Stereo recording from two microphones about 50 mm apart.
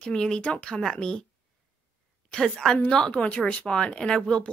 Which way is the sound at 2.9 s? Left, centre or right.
Centre.